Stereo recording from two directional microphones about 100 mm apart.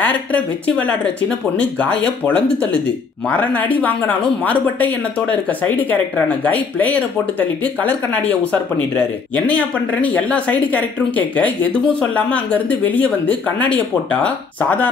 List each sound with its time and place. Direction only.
0.0 s speech: 15° left (ahead or behind)